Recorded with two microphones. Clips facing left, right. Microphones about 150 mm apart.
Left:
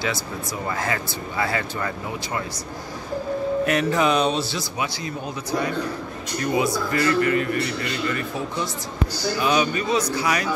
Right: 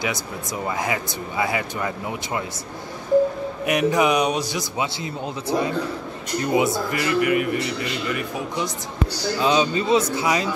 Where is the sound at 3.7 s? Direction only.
15° right (ahead or behind).